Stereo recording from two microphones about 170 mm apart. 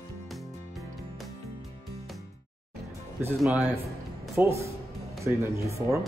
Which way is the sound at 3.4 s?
5° right (ahead or behind).